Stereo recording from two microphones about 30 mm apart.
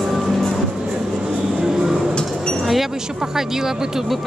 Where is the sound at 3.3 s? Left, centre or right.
Centre.